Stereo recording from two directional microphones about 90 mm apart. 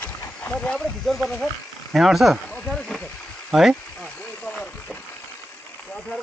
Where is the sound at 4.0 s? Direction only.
15° left (ahead or behind).